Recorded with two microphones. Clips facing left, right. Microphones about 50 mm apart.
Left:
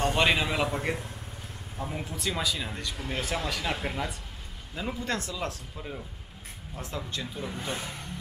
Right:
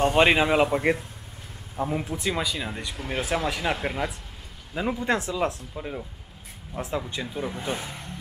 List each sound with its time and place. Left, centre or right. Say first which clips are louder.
0.0 s speech: right 6 dB; right